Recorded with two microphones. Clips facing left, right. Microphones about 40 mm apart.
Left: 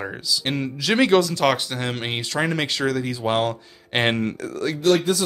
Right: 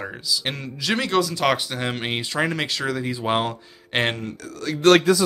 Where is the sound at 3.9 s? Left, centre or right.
Centre.